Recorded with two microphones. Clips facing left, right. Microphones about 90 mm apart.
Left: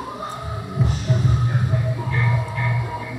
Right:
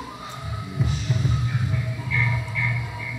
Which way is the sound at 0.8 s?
45° left (ahead or behind).